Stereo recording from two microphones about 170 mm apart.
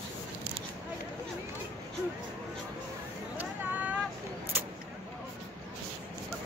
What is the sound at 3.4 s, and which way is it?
Vehicle, 10° right (ahead or behind).